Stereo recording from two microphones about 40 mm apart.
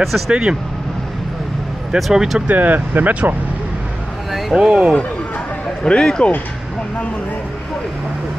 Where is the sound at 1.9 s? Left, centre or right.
Centre.